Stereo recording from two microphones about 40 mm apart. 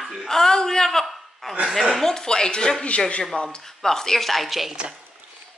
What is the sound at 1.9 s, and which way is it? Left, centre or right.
Speech, centre.